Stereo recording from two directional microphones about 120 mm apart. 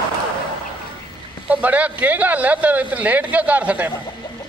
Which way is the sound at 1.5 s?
10° right (ahead or behind).